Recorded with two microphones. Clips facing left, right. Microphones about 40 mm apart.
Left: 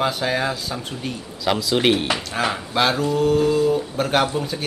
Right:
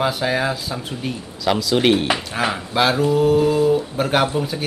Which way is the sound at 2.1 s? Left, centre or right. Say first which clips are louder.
Right 2 dB; centre.